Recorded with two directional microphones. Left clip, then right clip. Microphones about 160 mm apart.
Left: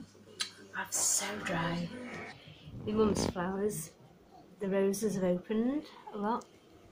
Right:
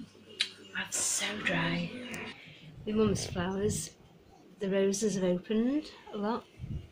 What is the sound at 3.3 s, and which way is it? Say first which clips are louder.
A woman's voice: right 1 dB; 25° right (ahead or behind).